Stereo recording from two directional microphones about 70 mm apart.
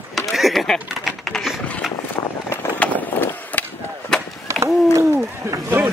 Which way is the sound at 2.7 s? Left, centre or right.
Left.